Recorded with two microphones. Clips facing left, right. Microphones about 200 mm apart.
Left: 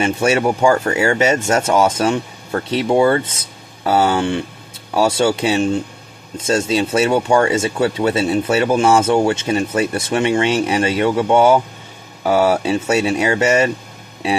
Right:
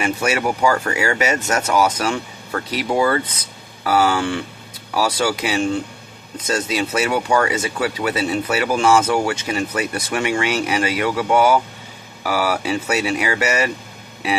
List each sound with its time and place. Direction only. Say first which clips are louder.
0.0 s speech: left 4 dB; 25° left (ahead or behind)